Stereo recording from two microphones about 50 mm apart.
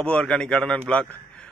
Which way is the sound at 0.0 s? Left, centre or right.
Centre.